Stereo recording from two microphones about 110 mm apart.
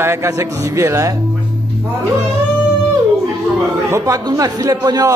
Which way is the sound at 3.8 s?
30° right (ahead or behind).